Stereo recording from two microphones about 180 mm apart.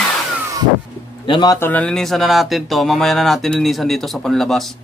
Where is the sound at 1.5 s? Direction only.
10° left (ahead or behind).